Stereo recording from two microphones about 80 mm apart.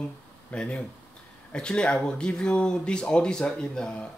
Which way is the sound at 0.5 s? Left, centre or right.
Centre.